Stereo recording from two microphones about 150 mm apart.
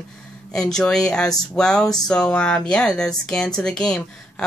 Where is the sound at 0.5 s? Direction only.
5° left (ahead or behind).